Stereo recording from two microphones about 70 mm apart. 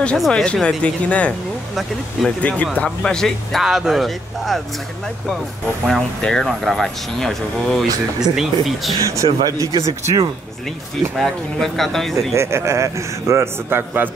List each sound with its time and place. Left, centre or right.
0.3 s speech: centre
2.4 s speech: centre
3.0 s speech: centre
3.6 s speech: centre
5.9 s speech: centre
9.0 s speech: right
9.4 s speech: right
11.1 s speech: centre
12.4 s a man's voice: right